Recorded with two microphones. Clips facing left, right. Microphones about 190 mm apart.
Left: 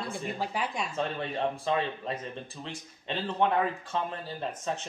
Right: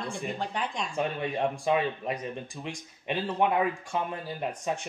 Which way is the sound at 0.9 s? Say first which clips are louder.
Right 2 dB; 15° right (ahead or behind).